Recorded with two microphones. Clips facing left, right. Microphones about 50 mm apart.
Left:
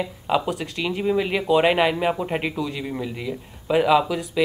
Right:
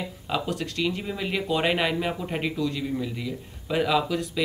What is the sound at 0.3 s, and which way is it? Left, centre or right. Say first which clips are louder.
Speech: left 5 dB; centre.